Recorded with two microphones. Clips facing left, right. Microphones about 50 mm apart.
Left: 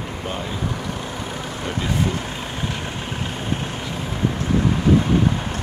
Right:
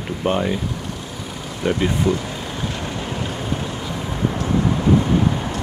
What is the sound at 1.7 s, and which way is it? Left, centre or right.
Speech, right.